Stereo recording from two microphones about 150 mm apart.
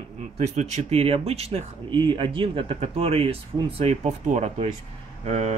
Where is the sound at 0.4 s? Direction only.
50° right (ahead or behind).